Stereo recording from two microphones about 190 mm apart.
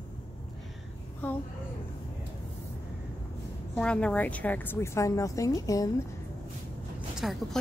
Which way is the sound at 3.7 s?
5° left (ahead or behind).